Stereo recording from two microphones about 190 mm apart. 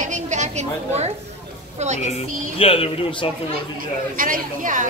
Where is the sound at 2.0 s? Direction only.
35° left (ahead or behind).